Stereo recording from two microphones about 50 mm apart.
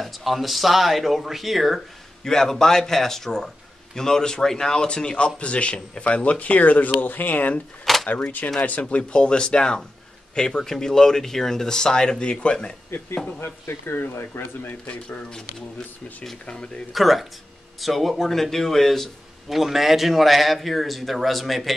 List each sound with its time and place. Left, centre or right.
0.0 s a man's voice: centre
2.2 s a man's voice: centre; by 7.6 s left
7.8 s a sound: centre
8.1 s speech: left
8.8 s a man's voice: centre
13.4 s speech: left
14.9 s speech: left
16.4 s speech: centre
16.9 s a man's voice: centre